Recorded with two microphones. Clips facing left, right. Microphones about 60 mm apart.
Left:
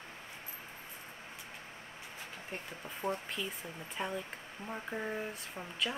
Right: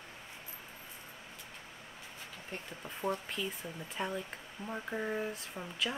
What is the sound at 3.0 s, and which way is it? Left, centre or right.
Speech, left.